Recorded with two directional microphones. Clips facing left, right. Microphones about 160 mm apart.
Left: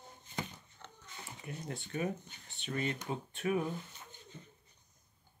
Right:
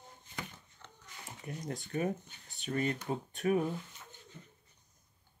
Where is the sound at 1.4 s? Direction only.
40° right (ahead or behind).